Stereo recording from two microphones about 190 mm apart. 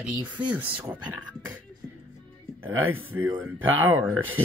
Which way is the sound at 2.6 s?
10° right (ahead or behind).